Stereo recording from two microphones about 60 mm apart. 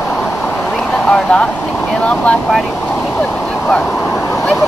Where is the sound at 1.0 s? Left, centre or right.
Centre.